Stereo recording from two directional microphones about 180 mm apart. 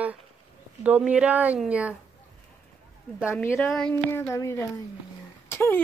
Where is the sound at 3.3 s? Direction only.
10° left (ahead or behind).